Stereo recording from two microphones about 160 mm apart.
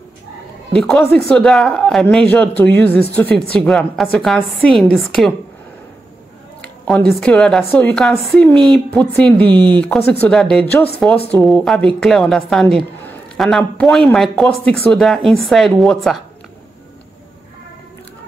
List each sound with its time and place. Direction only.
0.7 s speech: 5° left (ahead or behind)
6.6 s a woman's voice: 10° left (ahead or behind)
9.5 s speech: 30° right (ahead or behind)
9.8 s speech: 10° left (ahead or behind)